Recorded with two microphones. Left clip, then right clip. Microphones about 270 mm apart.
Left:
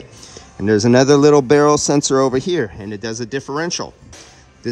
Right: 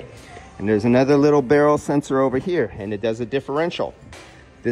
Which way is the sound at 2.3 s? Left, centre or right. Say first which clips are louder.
Left 3 dB; centre.